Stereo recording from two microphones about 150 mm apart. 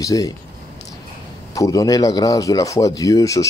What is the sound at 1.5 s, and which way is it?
Speech, 25° left (ahead or behind).